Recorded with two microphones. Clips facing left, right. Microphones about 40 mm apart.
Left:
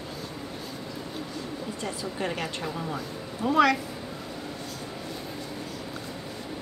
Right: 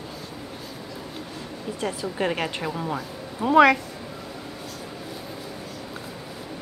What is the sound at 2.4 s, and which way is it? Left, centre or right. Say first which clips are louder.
Speech: right 4 dB; right.